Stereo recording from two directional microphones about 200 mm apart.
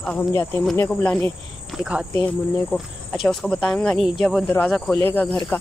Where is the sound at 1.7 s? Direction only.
5° right (ahead or behind).